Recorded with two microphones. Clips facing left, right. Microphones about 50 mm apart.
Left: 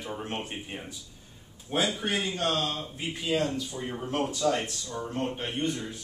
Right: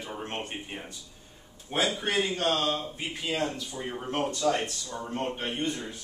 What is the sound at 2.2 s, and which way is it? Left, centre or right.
Speech, right.